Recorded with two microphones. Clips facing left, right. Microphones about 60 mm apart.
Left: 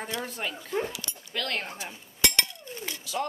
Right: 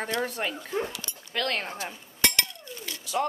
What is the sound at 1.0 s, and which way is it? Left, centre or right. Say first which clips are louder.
Dog: even; centre.